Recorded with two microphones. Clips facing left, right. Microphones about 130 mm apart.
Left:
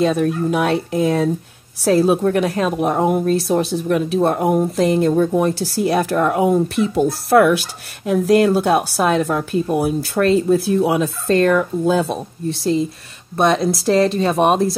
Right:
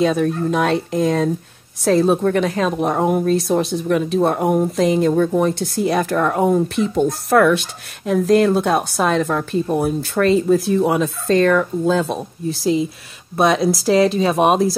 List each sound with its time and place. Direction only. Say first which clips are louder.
0.0 s a woman's voice: even; centre (ahead or behind)